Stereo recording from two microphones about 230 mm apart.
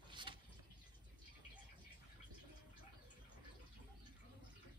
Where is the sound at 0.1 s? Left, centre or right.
Centre.